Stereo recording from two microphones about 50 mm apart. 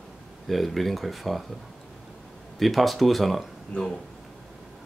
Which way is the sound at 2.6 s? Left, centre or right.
Centre.